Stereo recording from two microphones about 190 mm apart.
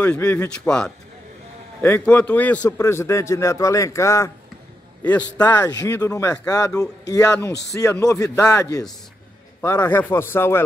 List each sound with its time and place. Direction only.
0.0 s a man's voice: 10° left (ahead or behind)
5.5 s a man's voice: 20° left (ahead or behind)